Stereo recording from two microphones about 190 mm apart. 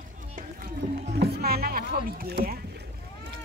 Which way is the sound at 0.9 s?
60° right (ahead or behind).